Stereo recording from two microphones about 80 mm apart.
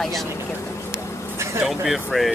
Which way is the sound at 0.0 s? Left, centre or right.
Centre.